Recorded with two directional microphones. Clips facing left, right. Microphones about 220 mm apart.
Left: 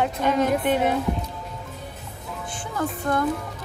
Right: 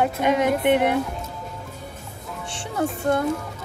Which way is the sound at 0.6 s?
65° right (ahead or behind).